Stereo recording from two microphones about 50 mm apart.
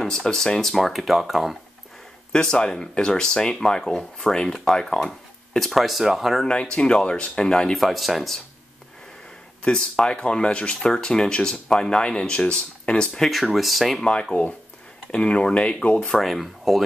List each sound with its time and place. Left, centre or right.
0.0 s speech: centre
2.3 s speech: centre
5.7 s speech: centre
6.4 s speech: centre
7.7 s speech: centre
9.7 s speech: centre
13.6 s speech: centre
15.0 s speech: left
16.1 s speech: centre